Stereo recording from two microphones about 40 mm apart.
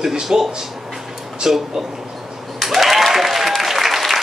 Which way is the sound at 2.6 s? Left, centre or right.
Centre.